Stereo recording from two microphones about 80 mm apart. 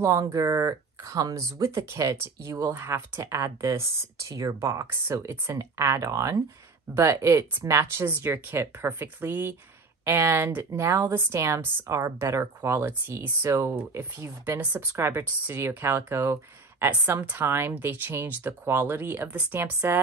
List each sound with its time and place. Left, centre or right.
0.0 s a woman's voice: right
3.2 s a woman's voice: right
14.6 s a woman's voice: centre
15.0 s a woman's voice: right